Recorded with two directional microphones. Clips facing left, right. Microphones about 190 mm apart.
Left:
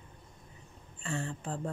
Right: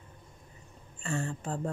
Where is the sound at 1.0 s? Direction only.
45° right (ahead or behind).